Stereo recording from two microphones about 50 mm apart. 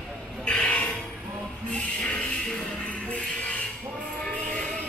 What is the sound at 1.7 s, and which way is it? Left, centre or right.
Music, left.